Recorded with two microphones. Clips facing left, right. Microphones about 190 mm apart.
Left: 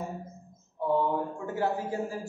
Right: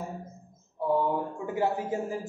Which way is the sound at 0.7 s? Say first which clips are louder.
Even; 10° right (ahead or behind).